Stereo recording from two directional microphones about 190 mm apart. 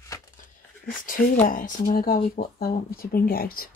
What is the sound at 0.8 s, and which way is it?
Speech, 45° left (ahead or behind).